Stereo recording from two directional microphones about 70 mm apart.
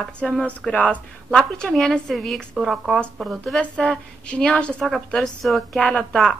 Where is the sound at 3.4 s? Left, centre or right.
Centre.